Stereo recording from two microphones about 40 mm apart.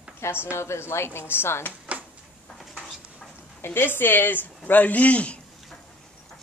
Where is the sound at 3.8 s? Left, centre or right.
Left.